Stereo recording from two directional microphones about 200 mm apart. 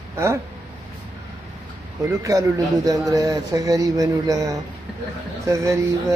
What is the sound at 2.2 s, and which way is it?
Speech, 15° right (ahead or behind).